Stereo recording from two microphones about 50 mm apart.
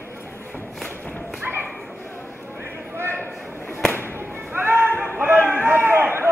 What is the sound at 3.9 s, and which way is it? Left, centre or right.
Music, left.